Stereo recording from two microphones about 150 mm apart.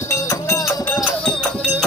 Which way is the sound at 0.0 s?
20° left (ahead or behind).